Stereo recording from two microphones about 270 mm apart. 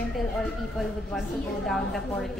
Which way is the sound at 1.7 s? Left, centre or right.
Centre.